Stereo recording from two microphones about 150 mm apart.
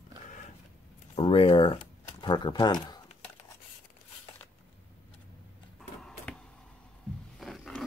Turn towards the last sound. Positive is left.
turn(degrees=0)  # may be behind; listen again after turning